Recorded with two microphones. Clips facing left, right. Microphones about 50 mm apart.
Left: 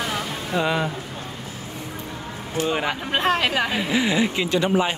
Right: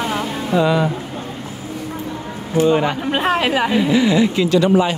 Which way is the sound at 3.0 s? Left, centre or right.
Centre.